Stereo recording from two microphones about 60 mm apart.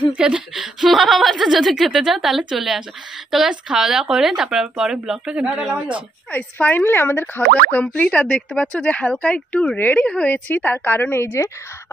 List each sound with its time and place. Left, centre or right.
0.2 s speech: centre
0.8 s a woman's voice: centre
6.3 s speech: left
7.8 s speech: left
9.8 s speech: left
10.0 s speech: left
10.5 s speech: left